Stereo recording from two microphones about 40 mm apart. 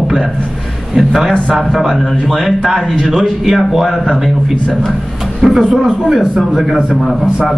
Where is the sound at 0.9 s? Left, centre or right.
Centre.